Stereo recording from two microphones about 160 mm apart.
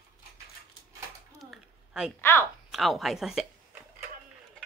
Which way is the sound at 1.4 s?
Centre (ahead or behind).